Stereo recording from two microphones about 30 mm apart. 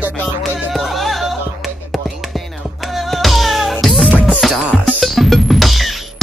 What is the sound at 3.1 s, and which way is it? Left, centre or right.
Music, centre.